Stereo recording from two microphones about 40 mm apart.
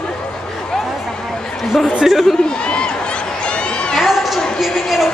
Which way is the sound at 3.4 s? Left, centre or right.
Left.